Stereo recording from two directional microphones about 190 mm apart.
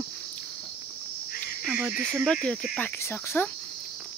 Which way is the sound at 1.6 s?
10° right (ahead or behind).